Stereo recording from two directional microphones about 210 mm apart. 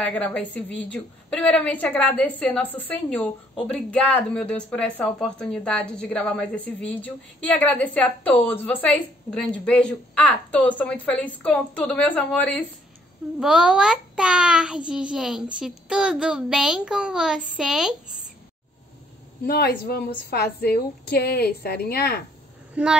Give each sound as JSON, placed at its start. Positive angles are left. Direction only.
{"t": 0.0, "sound": "a child's voice", "side_deg": 5}
{"t": 19.4, "sound": "a woman's voice", "side_deg": 45}